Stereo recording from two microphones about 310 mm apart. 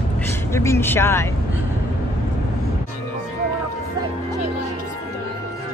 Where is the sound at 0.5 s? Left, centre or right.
Centre.